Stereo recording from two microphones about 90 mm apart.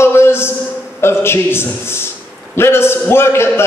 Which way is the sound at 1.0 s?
25° left (ahead or behind).